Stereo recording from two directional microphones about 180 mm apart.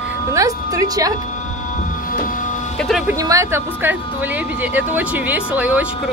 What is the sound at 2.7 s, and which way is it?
Speech, centre (ahead or behind).